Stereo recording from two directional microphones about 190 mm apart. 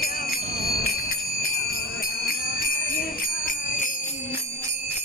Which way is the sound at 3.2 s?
45° left (ahead or behind).